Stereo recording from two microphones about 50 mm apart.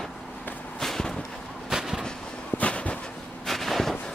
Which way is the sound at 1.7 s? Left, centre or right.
Centre.